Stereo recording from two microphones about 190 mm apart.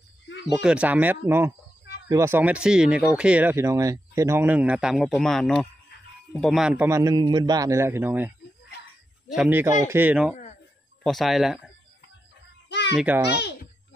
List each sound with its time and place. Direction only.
0.6 s speech: 5° right (ahead or behind)
9.3 s speech: 10° right (ahead or behind)
12.6 s a sound: 65° left (ahead or behind)
12.9 s speech: 10° right (ahead or behind)